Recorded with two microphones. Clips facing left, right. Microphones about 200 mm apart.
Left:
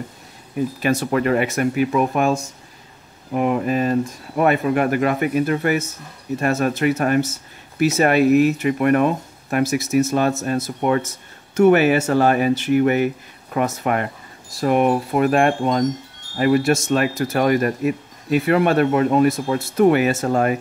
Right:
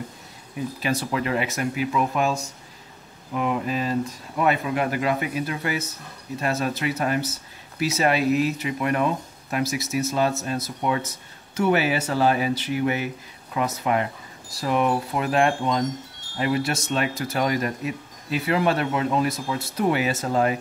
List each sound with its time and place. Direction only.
0.8 s speech: 55° left (ahead or behind)
3.3 s speech: 50° left (ahead or behind)